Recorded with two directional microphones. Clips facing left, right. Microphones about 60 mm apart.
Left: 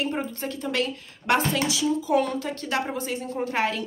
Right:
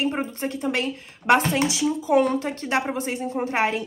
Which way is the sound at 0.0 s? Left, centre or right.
Right.